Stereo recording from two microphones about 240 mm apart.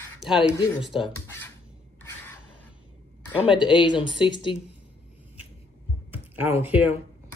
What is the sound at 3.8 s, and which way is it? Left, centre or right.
Speech, centre.